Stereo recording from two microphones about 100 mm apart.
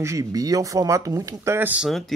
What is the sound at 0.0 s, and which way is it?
Speech, 35° right (ahead or behind).